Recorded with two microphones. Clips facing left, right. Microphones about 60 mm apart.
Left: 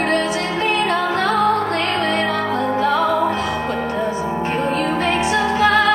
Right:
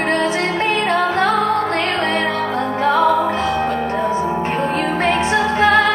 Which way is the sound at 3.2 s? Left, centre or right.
Right.